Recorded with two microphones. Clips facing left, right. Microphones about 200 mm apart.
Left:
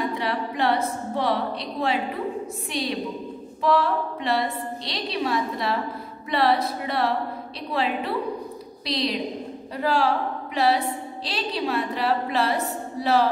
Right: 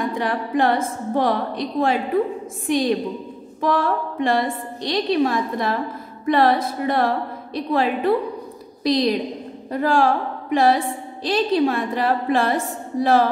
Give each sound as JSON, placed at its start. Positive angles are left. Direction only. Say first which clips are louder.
{"t": 0.0, "sound": "a woman's voice", "louder": "right 3 dB", "side_deg": -50}